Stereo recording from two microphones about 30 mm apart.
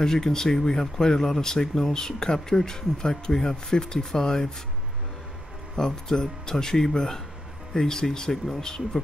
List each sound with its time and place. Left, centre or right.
0.0 s speech: centre
5.8 s speech: centre